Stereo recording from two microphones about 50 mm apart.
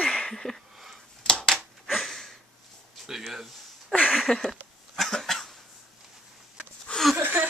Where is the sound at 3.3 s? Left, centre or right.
Centre.